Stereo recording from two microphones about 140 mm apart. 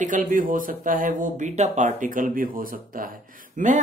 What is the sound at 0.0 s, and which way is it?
Speech, 65° right (ahead or behind).